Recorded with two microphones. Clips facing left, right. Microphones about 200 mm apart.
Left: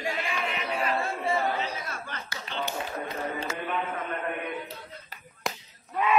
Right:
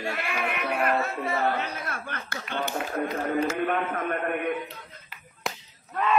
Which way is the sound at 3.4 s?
55° right (ahead or behind).